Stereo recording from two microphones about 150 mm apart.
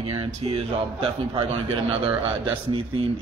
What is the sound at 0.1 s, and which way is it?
Speech, 35° right (ahead or behind).